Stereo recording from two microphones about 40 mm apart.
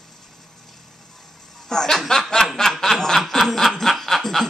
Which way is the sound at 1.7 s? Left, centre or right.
Centre.